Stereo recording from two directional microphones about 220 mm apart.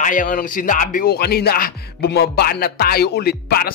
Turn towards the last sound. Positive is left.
turn(degrees=45)  # may be behind; listen again after turning